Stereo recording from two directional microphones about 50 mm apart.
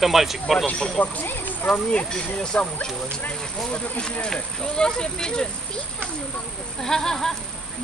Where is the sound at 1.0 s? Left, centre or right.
Left.